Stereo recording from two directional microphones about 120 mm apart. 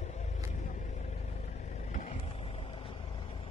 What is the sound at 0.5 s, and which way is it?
Vehicle, 85° left.